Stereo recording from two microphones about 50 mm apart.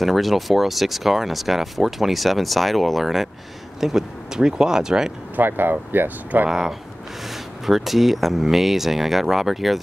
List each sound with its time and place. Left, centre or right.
0.0 s speech: centre
5.3 s speech: right
7.6 s speech: centre